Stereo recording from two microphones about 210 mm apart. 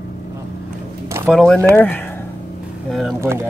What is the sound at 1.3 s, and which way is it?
Speech, 5° left (ahead or behind).